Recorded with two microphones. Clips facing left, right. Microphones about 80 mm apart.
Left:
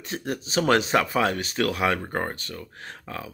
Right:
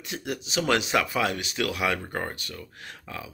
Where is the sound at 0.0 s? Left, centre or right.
Left.